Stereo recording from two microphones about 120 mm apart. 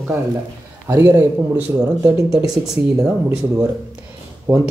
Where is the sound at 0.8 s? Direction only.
20° right (ahead or behind).